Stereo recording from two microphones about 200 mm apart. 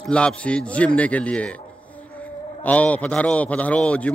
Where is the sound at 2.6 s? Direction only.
5° left (ahead or behind).